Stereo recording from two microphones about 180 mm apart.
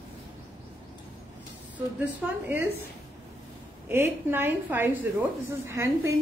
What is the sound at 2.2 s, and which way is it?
Speech, 5° right (ahead or behind).